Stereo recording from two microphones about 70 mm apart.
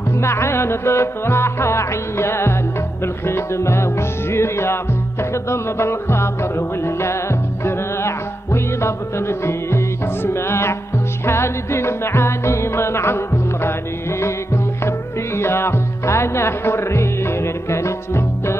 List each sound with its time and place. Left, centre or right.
0.2 s music: left